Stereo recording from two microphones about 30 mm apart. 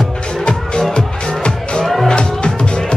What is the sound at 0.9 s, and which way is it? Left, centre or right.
Music, left.